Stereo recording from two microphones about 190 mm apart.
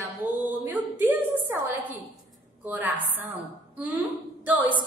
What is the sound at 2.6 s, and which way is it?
A woman's voice, 10° right (ahead or behind).